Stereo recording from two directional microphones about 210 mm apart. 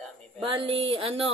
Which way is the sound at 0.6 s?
25° right (ahead or behind).